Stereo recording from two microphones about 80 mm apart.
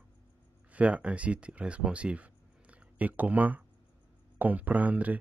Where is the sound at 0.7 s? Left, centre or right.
Centre.